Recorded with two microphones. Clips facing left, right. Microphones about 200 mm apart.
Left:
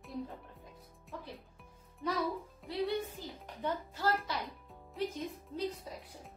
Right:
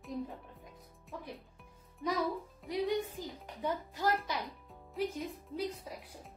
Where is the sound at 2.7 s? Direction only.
15° right (ahead or behind).